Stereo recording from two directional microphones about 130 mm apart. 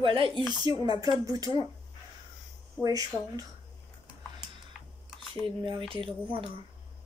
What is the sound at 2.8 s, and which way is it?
Speech, 25° right (ahead or behind).